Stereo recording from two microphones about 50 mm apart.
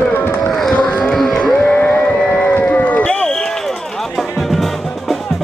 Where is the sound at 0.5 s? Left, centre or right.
Centre.